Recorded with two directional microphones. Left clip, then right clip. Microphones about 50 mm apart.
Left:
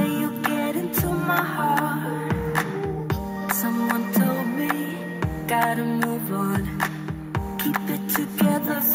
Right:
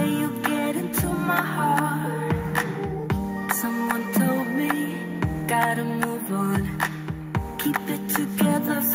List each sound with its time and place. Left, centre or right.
0.0 s music: centre